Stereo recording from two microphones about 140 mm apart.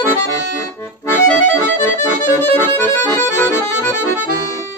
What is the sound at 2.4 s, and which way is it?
Accordion, 15° left (ahead or behind).